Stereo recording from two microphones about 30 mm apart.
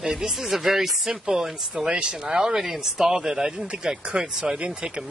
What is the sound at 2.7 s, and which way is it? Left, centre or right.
A man's voice, centre.